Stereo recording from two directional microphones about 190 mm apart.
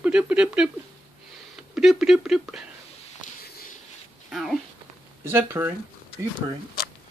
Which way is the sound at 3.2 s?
40° left (ahead or behind).